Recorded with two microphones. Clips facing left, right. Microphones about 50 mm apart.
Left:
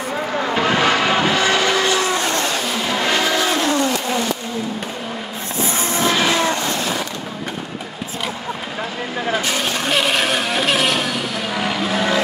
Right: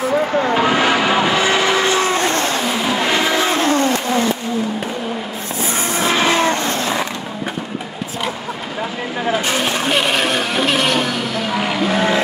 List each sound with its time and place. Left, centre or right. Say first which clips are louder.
0.6 s vehicle: left 1 dB; centre; by 2.7 s right
3.1 s vehicle: even; right
5.9 s vehicle: right 2 dB; right
9.7 s vehicle: even; centre
11.6 s music: right 2 dB; centre